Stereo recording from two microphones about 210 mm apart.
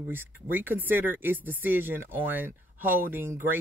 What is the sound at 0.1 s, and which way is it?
Speech, 10° right (ahead or behind).